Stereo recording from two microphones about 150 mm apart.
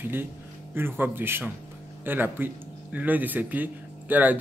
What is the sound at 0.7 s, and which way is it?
Speech, 15° right (ahead or behind).